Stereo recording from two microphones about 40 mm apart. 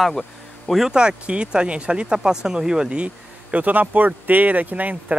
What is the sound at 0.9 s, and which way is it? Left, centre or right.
Speech, right.